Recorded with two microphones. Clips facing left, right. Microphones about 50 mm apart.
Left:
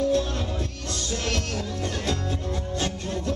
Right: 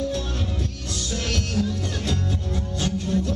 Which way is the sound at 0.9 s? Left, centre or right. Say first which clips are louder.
Even; centre.